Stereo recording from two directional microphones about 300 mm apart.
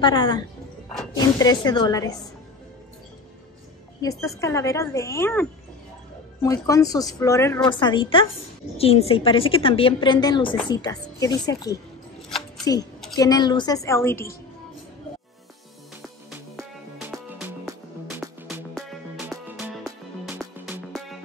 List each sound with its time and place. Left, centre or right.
0.0 s a woman's voice: centre
4.0 s a woman's voice: centre
13.1 s a woman's voice: centre
16.0 s music: centre